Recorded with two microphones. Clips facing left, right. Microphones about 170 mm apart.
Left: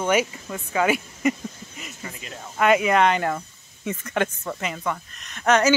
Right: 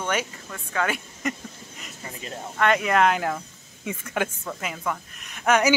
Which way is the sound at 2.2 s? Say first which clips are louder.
Right 3 dB; 30° right (ahead or behind).